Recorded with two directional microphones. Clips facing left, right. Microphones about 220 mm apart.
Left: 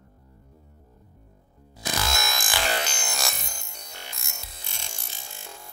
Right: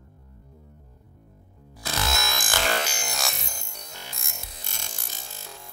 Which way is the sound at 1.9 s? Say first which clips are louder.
Right 1 dB; centre (ahead or behind).